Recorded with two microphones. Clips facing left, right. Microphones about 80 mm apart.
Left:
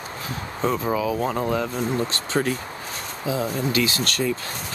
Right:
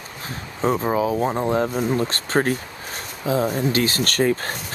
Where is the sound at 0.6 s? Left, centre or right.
Right.